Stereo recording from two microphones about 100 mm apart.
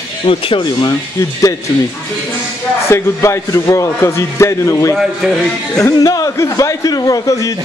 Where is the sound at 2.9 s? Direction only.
30° left (ahead or behind).